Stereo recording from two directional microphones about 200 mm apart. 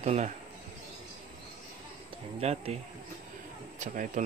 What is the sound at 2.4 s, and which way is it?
Speech, 30° right (ahead or behind).